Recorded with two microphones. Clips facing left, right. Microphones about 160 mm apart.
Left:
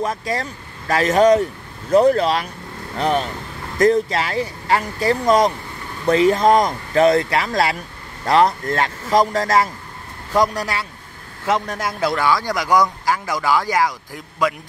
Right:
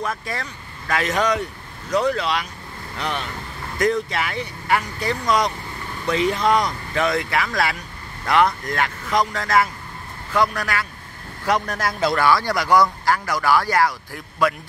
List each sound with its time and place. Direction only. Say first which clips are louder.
0.4 s speech: left 4 dB; 35° left (ahead or behind)
3.8 s speech: left 5 dB; 30° left (ahead or behind)
5.2 s speech: left 5 dB; 45° left (ahead or behind)
11.5 s speech: left 1 dB; 20° left (ahead or behind)
12.0 s speech: even; 10° left (ahead or behind)